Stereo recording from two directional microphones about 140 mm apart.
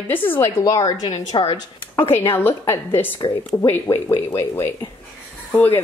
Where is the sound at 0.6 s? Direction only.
30° left (ahead or behind).